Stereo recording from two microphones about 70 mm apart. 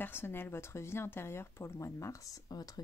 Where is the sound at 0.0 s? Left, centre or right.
Left.